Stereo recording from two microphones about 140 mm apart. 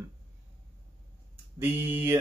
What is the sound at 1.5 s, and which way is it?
Speech, 15° right (ahead or behind).